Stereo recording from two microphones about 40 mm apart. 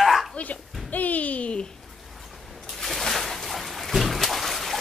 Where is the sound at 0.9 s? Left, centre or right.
Left.